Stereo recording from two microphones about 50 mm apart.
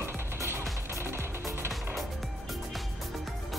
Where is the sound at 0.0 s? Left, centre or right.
Right.